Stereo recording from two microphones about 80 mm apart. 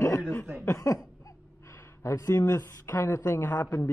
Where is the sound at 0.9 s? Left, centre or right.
Left.